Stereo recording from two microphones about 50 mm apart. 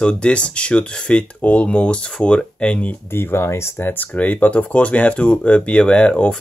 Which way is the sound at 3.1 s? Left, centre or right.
Left.